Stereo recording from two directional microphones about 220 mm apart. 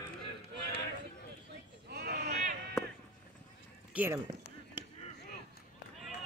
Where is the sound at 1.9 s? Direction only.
45° right (ahead or behind).